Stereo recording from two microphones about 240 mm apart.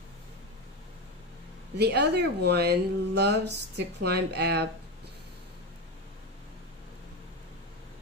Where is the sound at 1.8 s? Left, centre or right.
Right.